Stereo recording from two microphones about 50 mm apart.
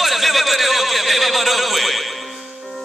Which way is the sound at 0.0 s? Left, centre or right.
Centre.